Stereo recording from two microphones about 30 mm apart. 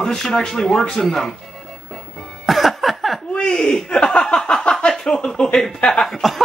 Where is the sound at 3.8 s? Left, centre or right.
Left.